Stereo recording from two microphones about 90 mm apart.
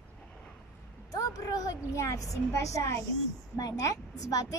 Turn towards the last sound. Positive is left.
turn(degrees=40)  # may be behind; listen again after turning